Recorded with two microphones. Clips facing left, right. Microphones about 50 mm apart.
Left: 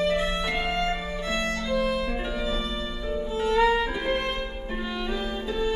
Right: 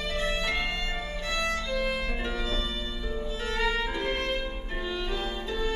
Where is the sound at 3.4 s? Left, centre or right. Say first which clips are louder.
Left 8 dB; centre.